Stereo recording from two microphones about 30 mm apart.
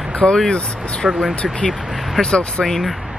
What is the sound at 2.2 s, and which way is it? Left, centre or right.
Speech, left.